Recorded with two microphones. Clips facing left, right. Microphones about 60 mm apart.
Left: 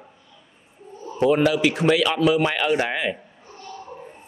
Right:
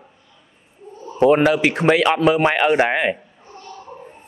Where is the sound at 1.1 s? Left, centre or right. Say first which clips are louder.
Right 4 dB; right.